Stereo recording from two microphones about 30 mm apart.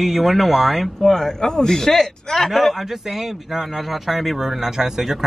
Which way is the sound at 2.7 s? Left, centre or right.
Centre.